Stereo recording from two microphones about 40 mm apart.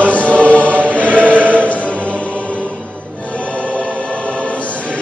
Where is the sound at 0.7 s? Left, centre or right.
Right.